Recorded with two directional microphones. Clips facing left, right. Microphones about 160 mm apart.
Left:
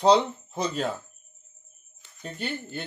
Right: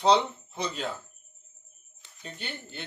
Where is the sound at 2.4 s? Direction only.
45° left (ahead or behind).